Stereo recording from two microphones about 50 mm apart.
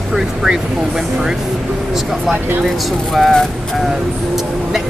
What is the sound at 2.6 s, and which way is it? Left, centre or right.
Speech, centre.